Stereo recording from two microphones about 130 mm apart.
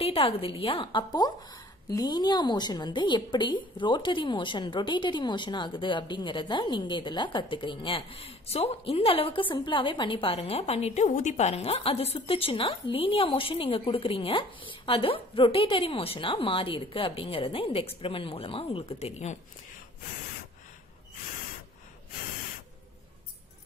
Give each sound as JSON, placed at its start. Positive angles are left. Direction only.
{"t": 0.0, "sound": "a woman's voice", "side_deg": 45}